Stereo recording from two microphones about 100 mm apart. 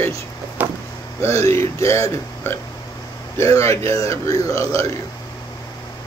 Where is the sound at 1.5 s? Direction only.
30° left (ahead or behind).